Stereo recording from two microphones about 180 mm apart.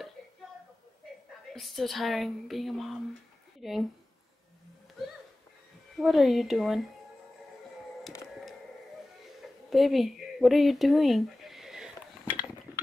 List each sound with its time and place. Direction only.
1.5 s a woman's voice: centre (ahead or behind)
5.9 s a woman's voice: centre (ahead or behind)
9.7 s a sound: centre (ahead or behind)